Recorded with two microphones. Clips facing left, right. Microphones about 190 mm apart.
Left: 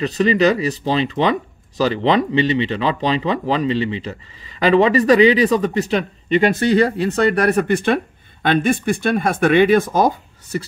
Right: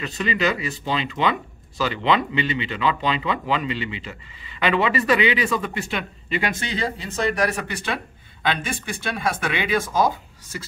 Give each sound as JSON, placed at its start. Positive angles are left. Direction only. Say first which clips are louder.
{"t": 0.0, "sound": "speech", "louder": "left 8 dB", "side_deg": 40}
{"t": 6.7, "sound": "speech", "louder": "left 12 dB", "side_deg": 60}